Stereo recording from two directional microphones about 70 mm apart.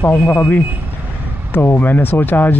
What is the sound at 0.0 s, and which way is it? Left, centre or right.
Speech, left.